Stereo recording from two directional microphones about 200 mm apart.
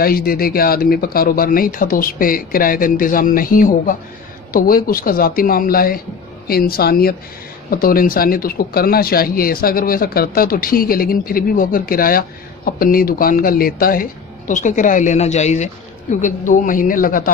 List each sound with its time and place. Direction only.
0.0 s speech: 50° left (ahead or behind)